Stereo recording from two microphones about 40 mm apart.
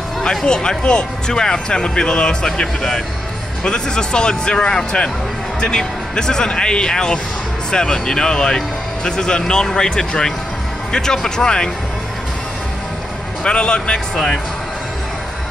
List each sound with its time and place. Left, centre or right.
0.2 s speech: centre
13.4 s speech: left